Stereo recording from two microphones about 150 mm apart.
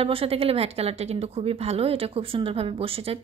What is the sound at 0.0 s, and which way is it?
Speech, 40° right (ahead or behind).